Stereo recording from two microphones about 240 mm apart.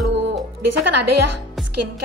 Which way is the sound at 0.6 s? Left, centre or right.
Right.